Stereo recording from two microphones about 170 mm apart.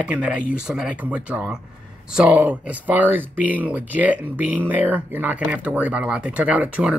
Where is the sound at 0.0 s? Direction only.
5° right (ahead or behind).